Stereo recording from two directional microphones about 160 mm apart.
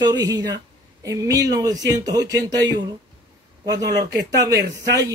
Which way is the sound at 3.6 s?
25° right (ahead or behind).